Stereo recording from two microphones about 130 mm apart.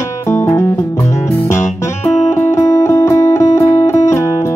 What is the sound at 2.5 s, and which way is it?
Music, 25° left (ahead or behind).